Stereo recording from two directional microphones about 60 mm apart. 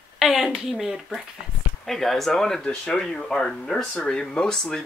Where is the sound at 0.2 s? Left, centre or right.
Centre.